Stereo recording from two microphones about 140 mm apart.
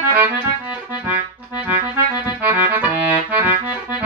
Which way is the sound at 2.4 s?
10° right (ahead or behind).